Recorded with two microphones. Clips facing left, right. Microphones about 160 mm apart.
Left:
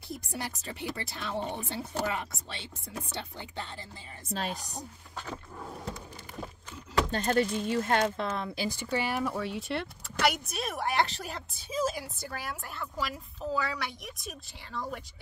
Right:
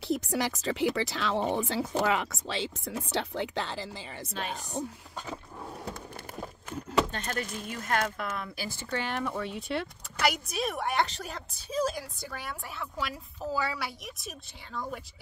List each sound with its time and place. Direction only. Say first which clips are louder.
0.1 s speech: right 9 dB; 85° right
4.3 s speech: left 3 dB; 40° left (ahead or behind)
7.1 s speech: left 8 dB; 35° left (ahead or behind); by 15.0 s centre (ahead or behind)